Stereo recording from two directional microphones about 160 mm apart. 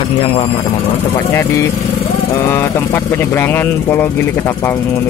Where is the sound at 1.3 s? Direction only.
15° left (ahead or behind).